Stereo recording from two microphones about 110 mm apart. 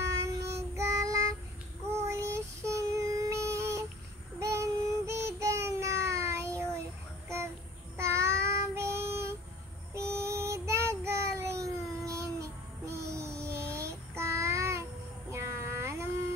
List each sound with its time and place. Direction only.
0.0 s child singing: 25° right (ahead or behind)
8.0 s child singing: 25° right (ahead or behind)
12.1 s music: 25° right (ahead or behind)
15.3 s a sound: 25° right (ahead or behind)